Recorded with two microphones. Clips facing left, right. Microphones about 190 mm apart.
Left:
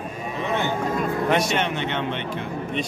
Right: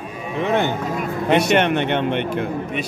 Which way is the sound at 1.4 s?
65° right (ahead or behind).